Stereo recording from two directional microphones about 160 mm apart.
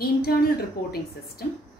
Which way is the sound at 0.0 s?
70° left (ahead or behind).